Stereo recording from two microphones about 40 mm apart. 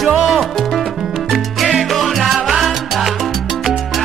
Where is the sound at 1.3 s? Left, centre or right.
Centre.